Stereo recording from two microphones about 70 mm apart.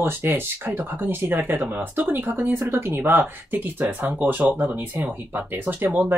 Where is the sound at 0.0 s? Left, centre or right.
Right.